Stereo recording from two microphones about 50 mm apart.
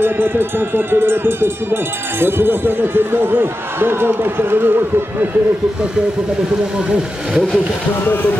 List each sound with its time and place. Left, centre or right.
0.0 s speech: right
8.0 s speech: left